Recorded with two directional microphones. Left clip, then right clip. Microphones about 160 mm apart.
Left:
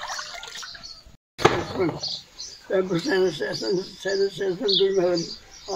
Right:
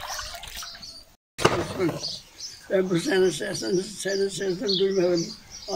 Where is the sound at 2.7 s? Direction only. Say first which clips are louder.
Even; 20° left (ahead or behind).